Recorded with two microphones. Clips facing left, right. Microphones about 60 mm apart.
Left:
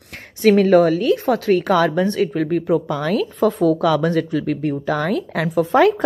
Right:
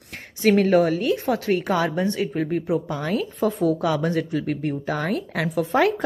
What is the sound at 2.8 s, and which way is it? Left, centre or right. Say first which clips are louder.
Speech: left 5 dB; left.